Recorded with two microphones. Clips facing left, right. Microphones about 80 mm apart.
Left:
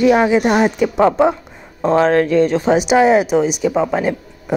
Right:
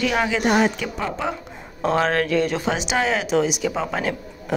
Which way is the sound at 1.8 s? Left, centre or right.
Centre.